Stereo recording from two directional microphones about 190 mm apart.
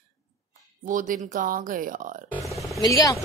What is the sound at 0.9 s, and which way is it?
A woman's voice, 45° right (ahead or behind).